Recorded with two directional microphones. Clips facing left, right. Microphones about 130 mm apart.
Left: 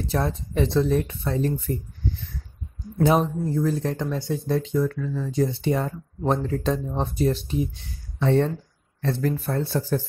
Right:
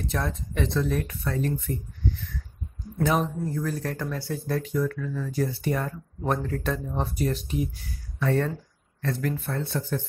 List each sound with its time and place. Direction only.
0.0 s speech: 30° left (ahead or behind)
3.0 s speech: 30° left (ahead or behind)